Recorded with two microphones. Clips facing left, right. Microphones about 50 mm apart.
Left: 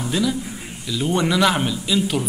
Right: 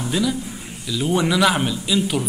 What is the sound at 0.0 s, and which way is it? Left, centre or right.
A man's voice, centre.